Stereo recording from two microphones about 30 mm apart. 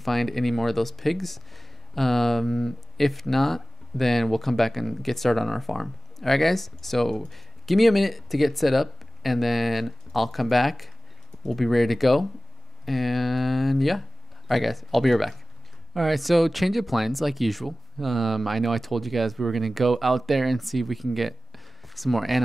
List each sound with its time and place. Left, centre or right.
0.0 s speech: centre